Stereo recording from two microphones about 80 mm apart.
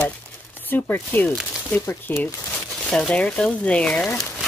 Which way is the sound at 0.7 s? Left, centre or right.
Left.